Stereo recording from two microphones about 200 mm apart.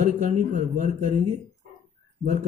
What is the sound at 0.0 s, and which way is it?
Speech, 35° right (ahead or behind).